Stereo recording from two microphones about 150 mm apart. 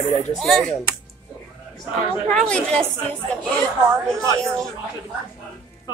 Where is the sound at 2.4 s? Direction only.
5° left (ahead or behind).